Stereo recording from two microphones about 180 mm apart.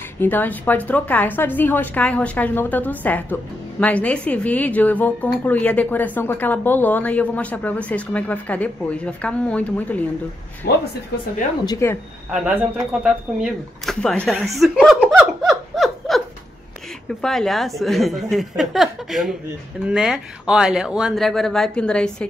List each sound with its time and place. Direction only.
0.2 s speech: 10° left (ahead or behind)
10.6 s speech: 65° left (ahead or behind)
11.6 s speech: 15° left (ahead or behind)
12.3 s speech: 5° right (ahead or behind)
14.3 s laughter: centre (ahead or behind)
17.2 s speech: centre (ahead or behind)